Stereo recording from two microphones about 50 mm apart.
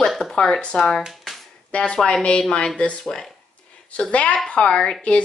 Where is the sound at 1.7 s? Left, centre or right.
Left.